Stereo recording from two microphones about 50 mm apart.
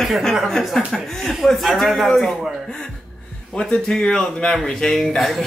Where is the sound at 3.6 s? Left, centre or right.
Centre.